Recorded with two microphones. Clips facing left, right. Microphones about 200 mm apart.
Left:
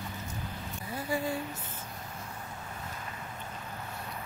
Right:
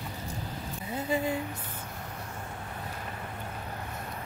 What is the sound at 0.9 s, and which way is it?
Speech, 20° right (ahead or behind).